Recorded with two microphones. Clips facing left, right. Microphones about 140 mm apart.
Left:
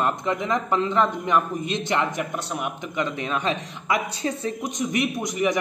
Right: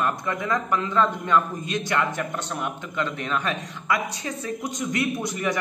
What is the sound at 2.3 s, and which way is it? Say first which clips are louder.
Speech: left 1 dB; 10° left (ahead or behind).